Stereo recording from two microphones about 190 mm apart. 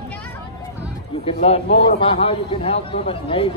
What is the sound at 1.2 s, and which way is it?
A man's voice, 30° left (ahead or behind).